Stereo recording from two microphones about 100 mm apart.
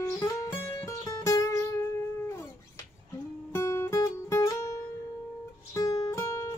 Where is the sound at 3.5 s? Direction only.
30° left (ahead or behind).